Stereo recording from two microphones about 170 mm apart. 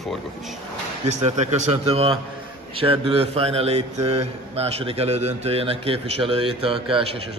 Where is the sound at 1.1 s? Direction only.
40° right (ahead or behind).